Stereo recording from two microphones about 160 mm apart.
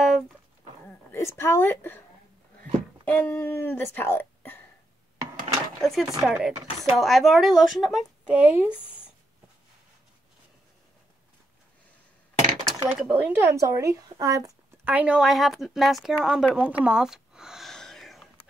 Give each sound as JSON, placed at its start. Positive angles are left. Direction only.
{"t": 1.1, "sound": "a woman's voice", "side_deg": 15}
{"t": 3.1, "sound": "speech", "side_deg": 10}
{"t": 5.3, "sound": "a sound", "side_deg": 0}
{"t": 6.2, "sound": "speech", "side_deg": -5}
{"t": 12.6, "sound": "speech", "side_deg": -5}
{"t": 13.6, "sound": "speech", "side_deg": -20}
{"t": 14.9, "sound": "speech", "side_deg": -10}